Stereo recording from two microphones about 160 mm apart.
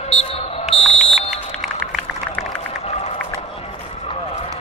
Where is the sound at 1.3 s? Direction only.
Centre (ahead or behind).